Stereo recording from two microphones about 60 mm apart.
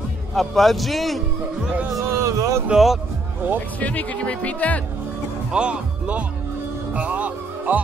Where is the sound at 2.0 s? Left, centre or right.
Right.